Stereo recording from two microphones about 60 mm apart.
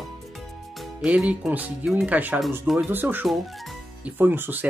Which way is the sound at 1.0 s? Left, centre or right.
Centre.